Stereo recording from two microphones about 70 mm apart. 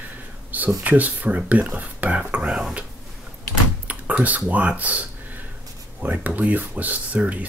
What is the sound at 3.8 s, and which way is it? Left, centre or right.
Speech, right.